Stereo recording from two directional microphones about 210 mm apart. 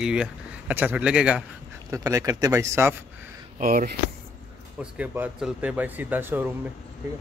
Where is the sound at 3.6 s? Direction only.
40° right (ahead or behind).